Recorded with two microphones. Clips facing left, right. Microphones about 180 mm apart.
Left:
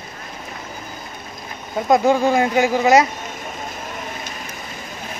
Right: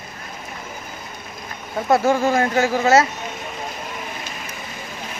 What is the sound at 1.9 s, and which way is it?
Speech, 15° left (ahead or behind).